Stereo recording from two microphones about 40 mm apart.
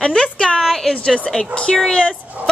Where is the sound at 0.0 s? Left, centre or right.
Left.